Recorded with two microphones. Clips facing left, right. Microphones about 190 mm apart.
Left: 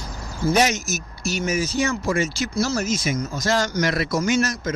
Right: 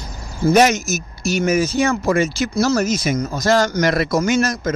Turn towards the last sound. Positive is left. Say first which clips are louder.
# right 3 dB
turn(degrees=-50)  # may be behind; listen again after turning